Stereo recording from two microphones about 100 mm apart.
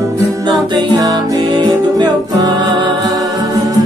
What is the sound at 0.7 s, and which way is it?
Music, 45° right (ahead or behind).